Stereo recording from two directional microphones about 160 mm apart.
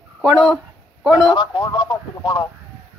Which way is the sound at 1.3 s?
30° left (ahead or behind).